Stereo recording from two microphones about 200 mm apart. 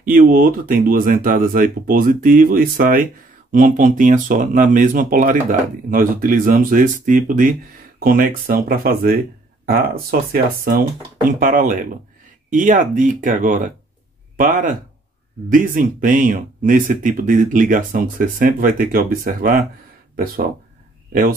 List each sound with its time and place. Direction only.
0.0 s speech: 45° right (ahead or behind)
10.3 s speech: 45° right (ahead or behind)
21.1 s speech: 45° right (ahead or behind)